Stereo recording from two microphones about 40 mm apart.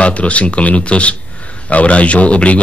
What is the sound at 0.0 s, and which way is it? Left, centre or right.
Speech, left.